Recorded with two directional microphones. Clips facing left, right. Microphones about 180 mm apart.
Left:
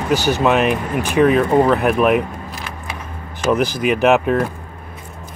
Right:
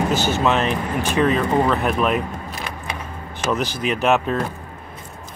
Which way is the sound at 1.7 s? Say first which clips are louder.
Left 5 dB; 55° left (ahead or behind).